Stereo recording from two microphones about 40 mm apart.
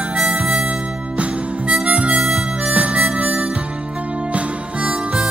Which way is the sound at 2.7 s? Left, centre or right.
Right.